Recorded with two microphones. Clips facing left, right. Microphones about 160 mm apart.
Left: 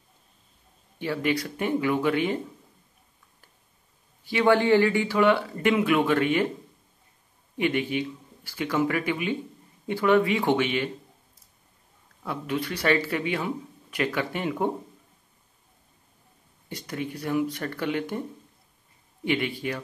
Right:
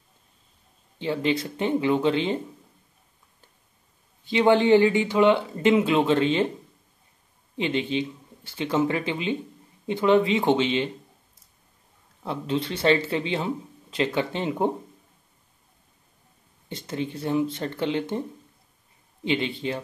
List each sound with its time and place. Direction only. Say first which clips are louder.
0.9 s speech: right 2 dB; 25° right (ahead or behind)
4.2 s speech: right 2 dB; 20° right (ahead or behind)
7.5 s speech: even; 20° right (ahead or behind)
12.2 s speech: right 2 dB; 25° right (ahead or behind)
16.6 s speech: right 2 dB; 25° right (ahead or behind)
19.2 s speech: right 1 dB; 20° right (ahead or behind)